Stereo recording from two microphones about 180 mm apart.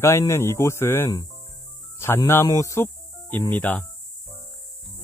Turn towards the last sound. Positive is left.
turn(degrees=10)  # may be behind; listen again after turning